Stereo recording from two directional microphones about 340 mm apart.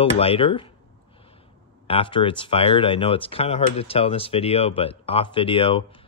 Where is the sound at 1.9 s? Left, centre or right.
Centre.